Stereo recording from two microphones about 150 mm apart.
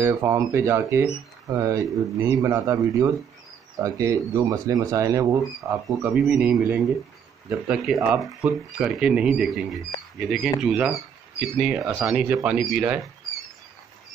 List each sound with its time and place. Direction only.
0.0 s speech: 20° right (ahead or behind)
6.2 s speech: 10° right (ahead or behind)